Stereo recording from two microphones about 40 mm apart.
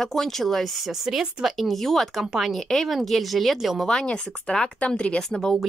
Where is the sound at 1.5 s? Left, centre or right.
Centre.